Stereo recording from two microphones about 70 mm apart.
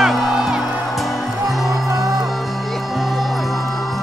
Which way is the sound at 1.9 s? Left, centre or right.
Right.